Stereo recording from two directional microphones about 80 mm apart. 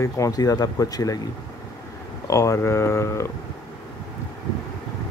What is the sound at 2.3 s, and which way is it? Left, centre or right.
Speech, left.